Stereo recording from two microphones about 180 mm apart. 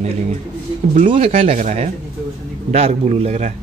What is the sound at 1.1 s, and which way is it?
Speech, 35° right (ahead or behind).